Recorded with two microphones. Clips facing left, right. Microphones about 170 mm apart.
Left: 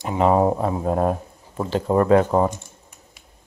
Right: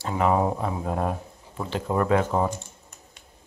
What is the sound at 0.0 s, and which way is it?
Speech, 20° left (ahead or behind).